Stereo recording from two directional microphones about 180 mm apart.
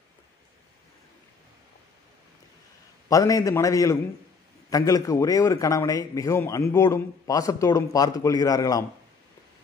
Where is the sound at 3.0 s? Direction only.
20° left (ahead or behind).